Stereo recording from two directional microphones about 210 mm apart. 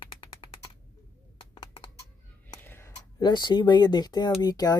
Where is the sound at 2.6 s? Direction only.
10° left (ahead or behind).